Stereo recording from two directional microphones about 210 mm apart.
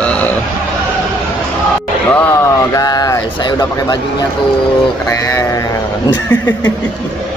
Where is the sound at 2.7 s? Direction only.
15° left (ahead or behind).